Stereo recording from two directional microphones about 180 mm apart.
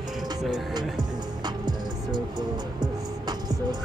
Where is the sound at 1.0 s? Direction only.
25° right (ahead or behind).